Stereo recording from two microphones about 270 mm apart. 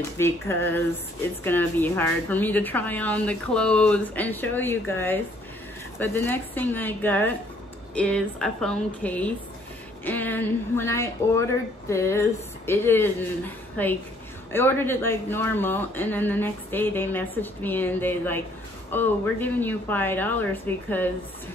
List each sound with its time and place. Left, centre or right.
0.2 s a woman's voice: centre